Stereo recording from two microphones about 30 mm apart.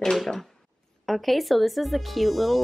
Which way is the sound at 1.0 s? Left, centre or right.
Centre.